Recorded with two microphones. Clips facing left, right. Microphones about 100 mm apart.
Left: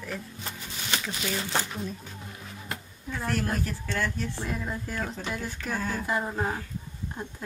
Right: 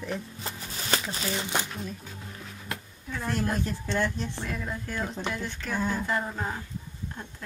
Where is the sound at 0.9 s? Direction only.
35° right (ahead or behind).